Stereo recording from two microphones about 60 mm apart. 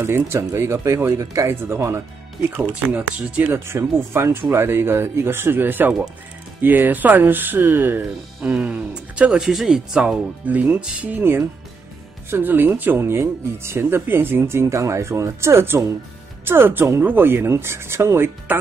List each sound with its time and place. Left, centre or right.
0.0 s speech: right
1.2 s speech: right
1.5 s speech: right
2.7 s speech: right
3.5 s speech: right
8.5 s speech: right
9.4 s speech: centre
10.4 s speech: right
11.1 s speech: right
14.4 s speech: right